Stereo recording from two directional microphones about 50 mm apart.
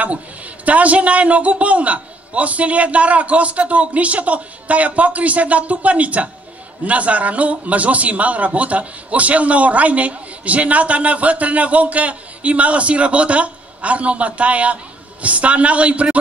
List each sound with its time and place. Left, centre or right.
0.7 s a man's voice: right